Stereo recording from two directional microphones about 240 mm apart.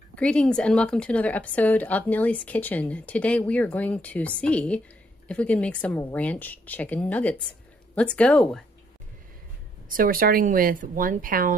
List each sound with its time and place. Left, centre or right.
0.1 s a woman's voice: centre
9.8 s speech: right